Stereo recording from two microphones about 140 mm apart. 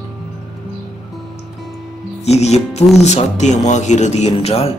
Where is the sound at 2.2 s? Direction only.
50° left (ahead or behind).